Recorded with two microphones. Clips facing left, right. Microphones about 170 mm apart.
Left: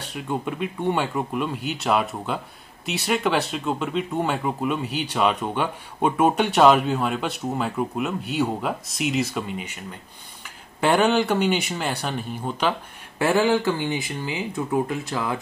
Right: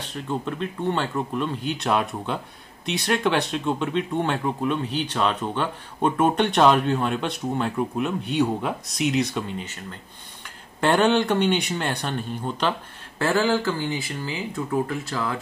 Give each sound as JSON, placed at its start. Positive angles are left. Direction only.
{"t": 0.0, "sound": "speech", "side_deg": 10}
{"t": 10.8, "sound": "speech", "side_deg": 10}
{"t": 13.2, "sound": "speech", "side_deg": 20}